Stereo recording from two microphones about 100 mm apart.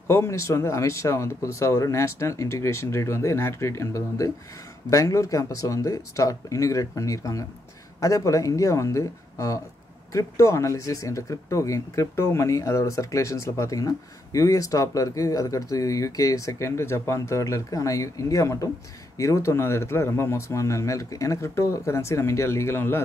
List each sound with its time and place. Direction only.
0.1 s speech: 30° left (ahead or behind)